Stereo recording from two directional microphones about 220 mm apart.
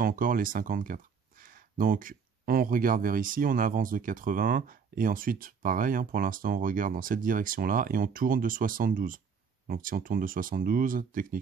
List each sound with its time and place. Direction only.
0.0 s speech: 40° right (ahead or behind)